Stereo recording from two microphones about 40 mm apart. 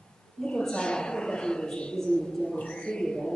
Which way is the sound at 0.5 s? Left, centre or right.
Left.